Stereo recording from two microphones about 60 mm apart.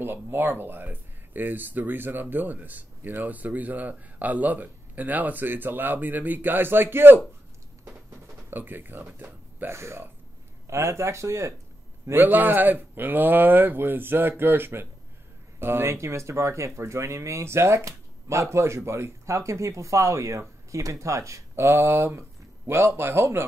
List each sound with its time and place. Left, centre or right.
0.0 s speech: right
8.5 s speech: right
9.7 s speech: right
12.1 s speech: right